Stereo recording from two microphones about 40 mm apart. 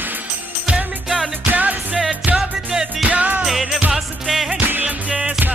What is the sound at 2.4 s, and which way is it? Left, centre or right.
Music, centre.